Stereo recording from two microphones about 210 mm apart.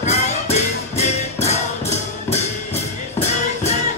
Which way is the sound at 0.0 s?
30° left (ahead or behind).